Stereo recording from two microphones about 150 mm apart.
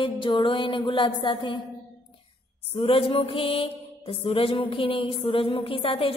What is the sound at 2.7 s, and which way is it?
Mantra, 35° left (ahead or behind).